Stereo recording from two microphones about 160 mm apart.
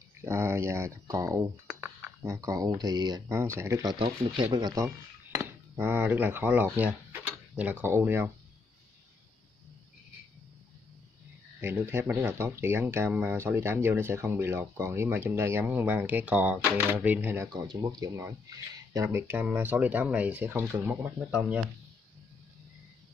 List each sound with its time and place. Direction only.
0.2 s speech: 15° right (ahead or behind)
7.1 s a sound: 10° right (ahead or behind)
11.6 s speech: 15° right (ahead or behind)